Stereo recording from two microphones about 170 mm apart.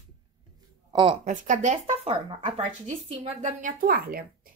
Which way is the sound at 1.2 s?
50° right (ahead or behind).